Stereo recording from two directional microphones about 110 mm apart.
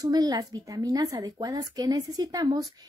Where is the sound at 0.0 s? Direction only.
35° right (ahead or behind).